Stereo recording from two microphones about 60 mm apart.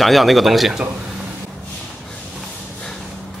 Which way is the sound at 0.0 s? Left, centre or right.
Centre.